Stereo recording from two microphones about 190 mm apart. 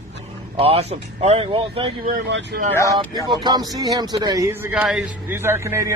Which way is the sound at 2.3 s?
70° right (ahead or behind).